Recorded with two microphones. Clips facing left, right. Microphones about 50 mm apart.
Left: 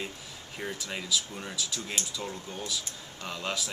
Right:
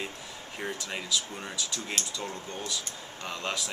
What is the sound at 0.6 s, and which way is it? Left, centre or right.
Speech, centre.